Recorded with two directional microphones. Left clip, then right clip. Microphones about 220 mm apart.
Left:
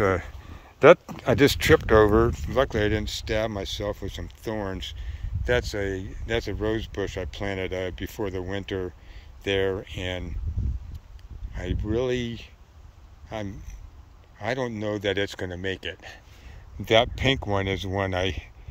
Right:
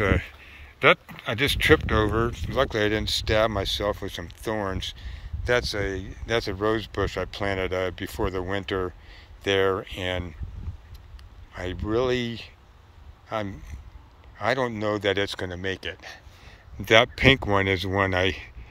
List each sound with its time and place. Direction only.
0.0 s speech: 20° left (ahead or behind)
0.7 s speech: 40° left (ahead or behind); by 10.3 s 10° left (ahead or behind)
11.5 s speech: 5° left (ahead or behind)
17.4 s speech: 25° right (ahead or behind)